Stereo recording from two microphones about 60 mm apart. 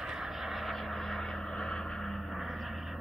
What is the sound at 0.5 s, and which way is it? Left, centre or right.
Vehicle, centre.